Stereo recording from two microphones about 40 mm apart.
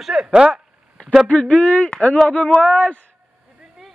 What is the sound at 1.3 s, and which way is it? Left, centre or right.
Speech, left.